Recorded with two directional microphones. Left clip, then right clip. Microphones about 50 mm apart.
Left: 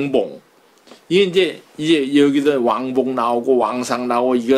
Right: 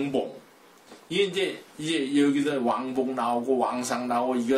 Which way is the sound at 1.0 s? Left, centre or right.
Left.